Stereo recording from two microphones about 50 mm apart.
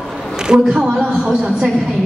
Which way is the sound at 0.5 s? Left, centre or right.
Centre.